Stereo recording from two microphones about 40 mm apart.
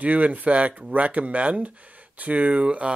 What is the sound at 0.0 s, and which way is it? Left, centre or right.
Speech, right.